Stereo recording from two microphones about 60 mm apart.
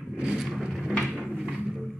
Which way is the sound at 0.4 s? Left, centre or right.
Centre.